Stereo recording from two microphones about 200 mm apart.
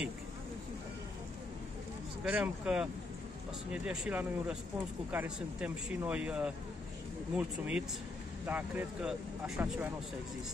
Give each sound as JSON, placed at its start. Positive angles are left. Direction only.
{"t": 2.2, "sound": "speech", "side_deg": -5}